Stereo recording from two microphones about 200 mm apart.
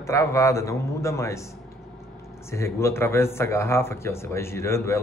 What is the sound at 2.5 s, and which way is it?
Speech, 15° left (ahead or behind).